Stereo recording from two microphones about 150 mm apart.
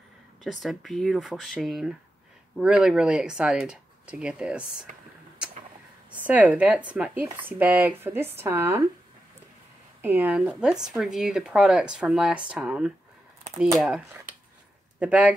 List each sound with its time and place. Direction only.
0.4 s speech: centre (ahead or behind)
6.2 s speech: 10° right (ahead or behind)
10.0 s speech: 10° right (ahead or behind)